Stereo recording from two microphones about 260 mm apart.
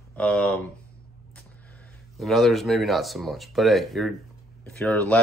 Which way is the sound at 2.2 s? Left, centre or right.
Centre.